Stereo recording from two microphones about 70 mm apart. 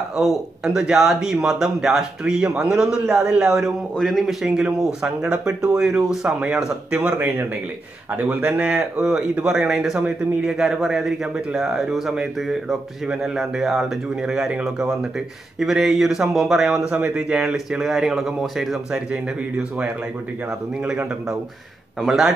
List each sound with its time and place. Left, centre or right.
0.7 s a man's voice: centre
4.5 s speech: centre
9.6 s speech: centre
9.9 s speech: centre
10.4 s a man's voice: centre
22.0 s a man's voice: centre